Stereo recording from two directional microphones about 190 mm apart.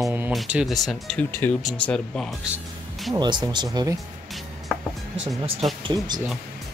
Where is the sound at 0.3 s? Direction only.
5° right (ahead or behind).